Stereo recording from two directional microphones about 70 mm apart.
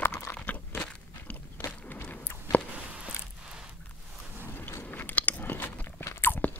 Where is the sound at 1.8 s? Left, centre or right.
Left.